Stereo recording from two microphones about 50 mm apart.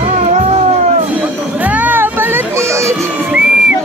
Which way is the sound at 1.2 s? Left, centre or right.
Right.